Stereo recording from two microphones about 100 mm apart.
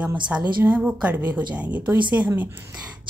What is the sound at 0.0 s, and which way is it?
A woman's voice, 10° right (ahead or behind).